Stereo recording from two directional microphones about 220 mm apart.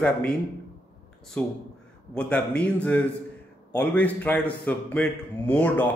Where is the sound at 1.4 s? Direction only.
5° left (ahead or behind).